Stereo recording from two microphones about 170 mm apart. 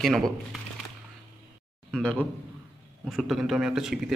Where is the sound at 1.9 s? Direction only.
5° left (ahead or behind).